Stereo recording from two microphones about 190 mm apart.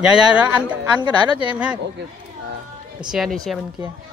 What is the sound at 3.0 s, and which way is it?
Speech, 5° right (ahead or behind).